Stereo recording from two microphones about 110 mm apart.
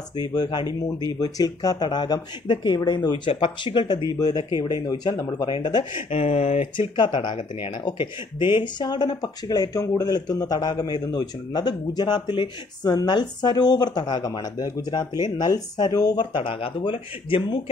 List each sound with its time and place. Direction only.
0.1 s speech: 40° left (ahead or behind)
6.0 s speech: 65° left (ahead or behind)
7.0 s speech: 45° left (ahead or behind)
16.3 s speech: 50° left (ahead or behind)